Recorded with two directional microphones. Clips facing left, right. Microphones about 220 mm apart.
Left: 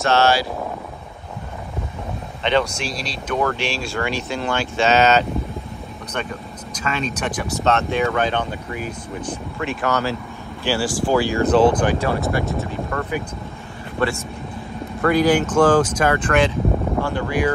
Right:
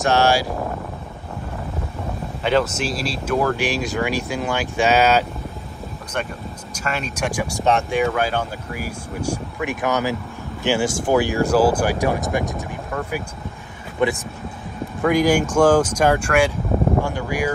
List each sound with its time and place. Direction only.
0.0 s speech: 15° right (ahead or behind)
2.4 s speech: 5° right (ahead or behind)
3.7 s speech: 15° right (ahead or behind)
6.7 s speech: 10° right (ahead or behind)
13.9 s speech: 15° right (ahead or behind)